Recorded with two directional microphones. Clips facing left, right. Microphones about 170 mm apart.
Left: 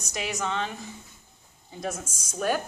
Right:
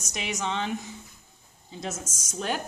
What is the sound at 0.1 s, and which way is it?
Speech, 20° right (ahead or behind).